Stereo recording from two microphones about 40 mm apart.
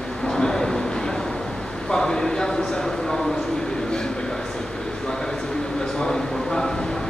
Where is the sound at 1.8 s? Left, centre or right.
Centre.